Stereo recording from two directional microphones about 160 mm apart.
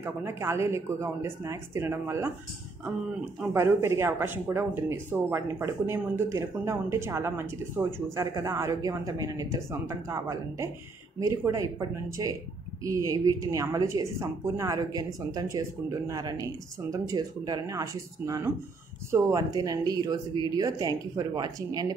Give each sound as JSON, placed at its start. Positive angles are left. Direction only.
{"t": 0.0, "sound": "speech", "side_deg": -15}
{"t": 3.5, "sound": "a woman's voice", "side_deg": -15}
{"t": 12.8, "sound": "a woman's voice", "side_deg": -20}